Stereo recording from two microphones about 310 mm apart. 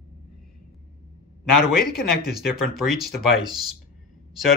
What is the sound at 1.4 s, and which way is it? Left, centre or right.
Speech, left.